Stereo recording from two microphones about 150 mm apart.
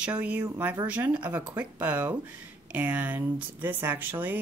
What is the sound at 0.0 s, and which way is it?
Speech, 10° right (ahead or behind).